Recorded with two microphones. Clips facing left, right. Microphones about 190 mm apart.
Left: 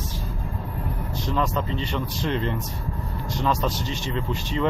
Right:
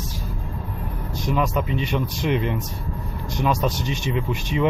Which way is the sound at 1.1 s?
15° right (ahead or behind).